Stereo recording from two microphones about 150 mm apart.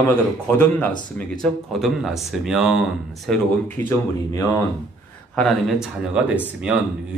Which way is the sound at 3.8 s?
15° left (ahead or behind).